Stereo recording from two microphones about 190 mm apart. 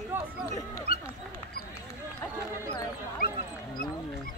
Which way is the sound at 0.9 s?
50° left (ahead or behind).